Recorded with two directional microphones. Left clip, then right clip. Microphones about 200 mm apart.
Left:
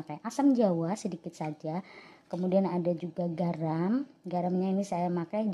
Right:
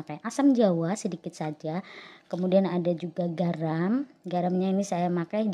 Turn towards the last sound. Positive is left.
turn(degrees=-10)  # may be behind; listen again after turning